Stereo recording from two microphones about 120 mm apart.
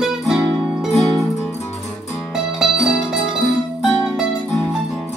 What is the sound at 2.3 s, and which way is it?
Music, 5° right (ahead or behind).